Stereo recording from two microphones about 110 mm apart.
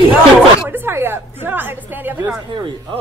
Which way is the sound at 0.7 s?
20° right (ahead or behind).